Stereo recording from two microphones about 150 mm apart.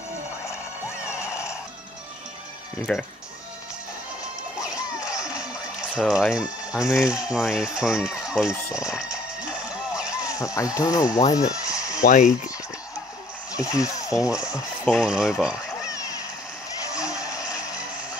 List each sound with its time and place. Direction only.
1.0 s music: 5° right (ahead or behind)
2.9 s speech: 5° left (ahead or behind)
4.6 s music: 5° right (ahead or behind)
5.1 s music: 20° left (ahead or behind)
5.4 s a sound: 5° right (ahead or behind)
7.2 s speech: 5° right (ahead or behind)
8.7 s music: 5° right (ahead or behind)
10.2 s speech: 20° left (ahead or behind)
12.0 s speech: 55° left (ahead or behind)
13.6 s speech: 20° left (ahead or behind)
14.5 s speech: 5° right (ahead or behind)
15.8 s a sound: 20° left (ahead or behind)